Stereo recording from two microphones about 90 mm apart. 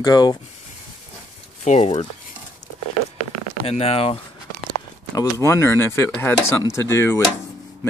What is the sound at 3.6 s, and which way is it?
Speech, 90° left.